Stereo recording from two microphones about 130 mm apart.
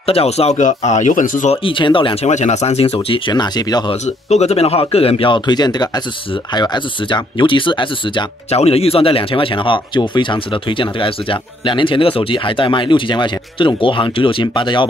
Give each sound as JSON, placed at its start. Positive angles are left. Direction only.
{"t": 0.0, "sound": "speech", "side_deg": 50}
{"t": 0.6, "sound": "speech", "side_deg": 70}
{"t": 1.5, "sound": "speech", "side_deg": 40}
{"t": 2.2, "sound": "speech", "side_deg": 60}
{"t": 4.0, "sound": "speech", "side_deg": 60}
{"t": 8.5, "sound": "speech", "side_deg": 50}